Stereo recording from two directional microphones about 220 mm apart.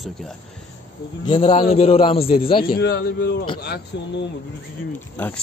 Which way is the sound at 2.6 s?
45° left (ahead or behind).